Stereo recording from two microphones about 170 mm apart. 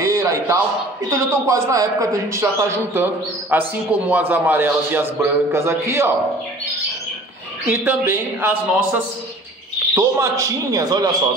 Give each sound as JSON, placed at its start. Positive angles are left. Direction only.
{"t": 0.0, "sound": "a sound", "side_deg": -15}
{"t": 1.1, "sound": "a man's voice", "side_deg": -20}
{"t": 7.6, "sound": "a man's voice", "side_deg": -10}
{"t": 9.9, "sound": "a man's voice", "side_deg": -15}